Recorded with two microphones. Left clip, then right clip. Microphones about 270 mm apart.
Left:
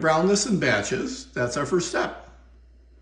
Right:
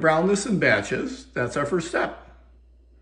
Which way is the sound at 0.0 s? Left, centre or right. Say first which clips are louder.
Even; centre.